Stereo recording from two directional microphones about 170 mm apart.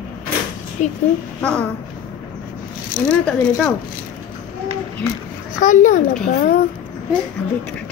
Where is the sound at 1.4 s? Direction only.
5° left (ahead or behind).